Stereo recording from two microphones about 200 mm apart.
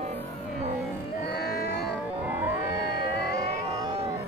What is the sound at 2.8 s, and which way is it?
Music, 55° left (ahead or behind).